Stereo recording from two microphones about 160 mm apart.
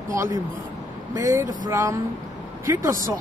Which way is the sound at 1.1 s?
20° right (ahead or behind).